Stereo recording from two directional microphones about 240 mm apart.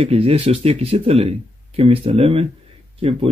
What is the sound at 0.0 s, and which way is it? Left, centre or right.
Speech, right.